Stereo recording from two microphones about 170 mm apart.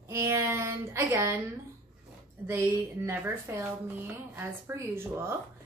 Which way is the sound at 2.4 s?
15° right (ahead or behind).